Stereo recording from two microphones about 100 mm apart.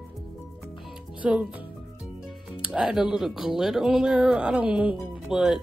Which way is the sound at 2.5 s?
10° right (ahead or behind).